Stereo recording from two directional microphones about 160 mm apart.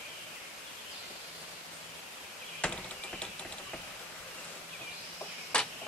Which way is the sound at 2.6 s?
5° left (ahead or behind).